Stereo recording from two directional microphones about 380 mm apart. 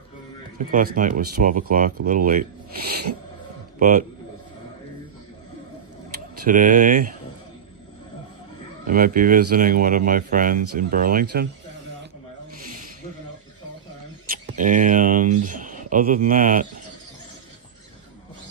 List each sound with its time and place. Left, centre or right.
0.7 s speech: right
6.4 s speech: right
8.8 s speech: right
14.6 s speech: centre